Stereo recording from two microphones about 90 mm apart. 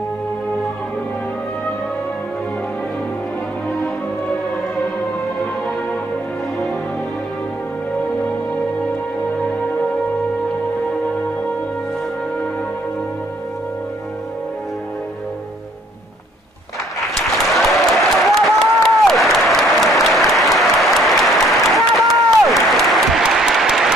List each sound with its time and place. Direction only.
17.1 s applause: centre (ahead or behind)